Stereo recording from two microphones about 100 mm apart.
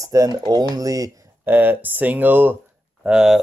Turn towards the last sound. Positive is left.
turn(degrees=-10)  # may be behind; listen again after turning